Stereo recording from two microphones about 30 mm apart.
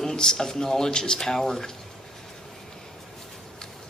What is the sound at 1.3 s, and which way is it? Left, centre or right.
Speech, centre.